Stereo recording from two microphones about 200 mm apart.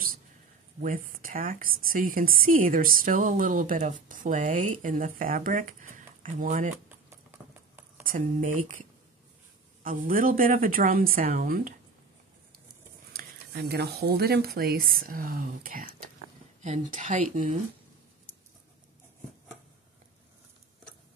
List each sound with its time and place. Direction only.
0.7 s a woman's voice: 45° right (ahead or behind)
7.1 s clip-clop: 10° right (ahead or behind)
8.0 s speech: 40° right (ahead or behind)
9.8 s speech: 45° right (ahead or behind)
13.1 s a woman's voice: 50° right (ahead or behind)